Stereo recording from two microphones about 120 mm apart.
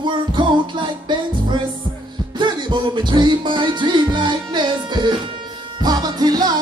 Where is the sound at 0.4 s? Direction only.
40° right (ahead or behind).